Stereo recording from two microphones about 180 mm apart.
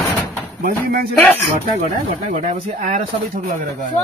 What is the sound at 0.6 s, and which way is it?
Speech, 55° right (ahead or behind).